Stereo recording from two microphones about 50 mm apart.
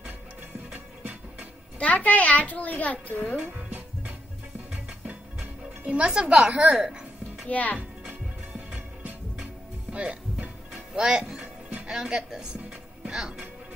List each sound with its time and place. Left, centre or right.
1.8 s a child's voice: left
3.4 s music: right; by 7.4 s centre
7.4 s a child's voice: left
9.9 s music: right
11.9 s a woman's voice: centre